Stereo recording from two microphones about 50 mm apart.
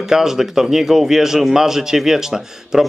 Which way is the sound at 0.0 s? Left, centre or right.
Centre.